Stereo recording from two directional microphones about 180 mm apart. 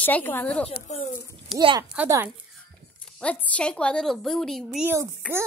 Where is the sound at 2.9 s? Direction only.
5° left (ahead or behind).